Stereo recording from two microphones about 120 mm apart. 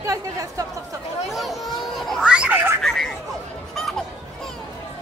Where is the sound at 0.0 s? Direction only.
30° right (ahead or behind).